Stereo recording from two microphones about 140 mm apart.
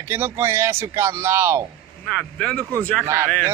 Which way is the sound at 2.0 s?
5° left (ahead or behind).